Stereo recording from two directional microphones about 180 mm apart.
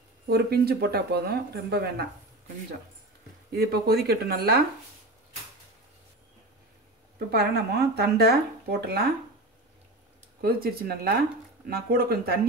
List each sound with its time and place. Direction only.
0.3 s speech: 60° right (ahead or behind)
3.5 s speech: 60° right (ahead or behind)
7.2 s speech: 65° right (ahead or behind)
10.4 s speech: 60° right (ahead or behind)